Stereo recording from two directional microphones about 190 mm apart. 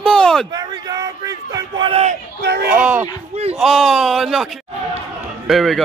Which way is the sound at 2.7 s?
10° right (ahead or behind).